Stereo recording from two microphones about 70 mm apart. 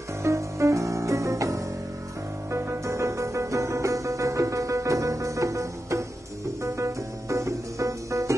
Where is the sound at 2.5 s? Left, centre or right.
Right.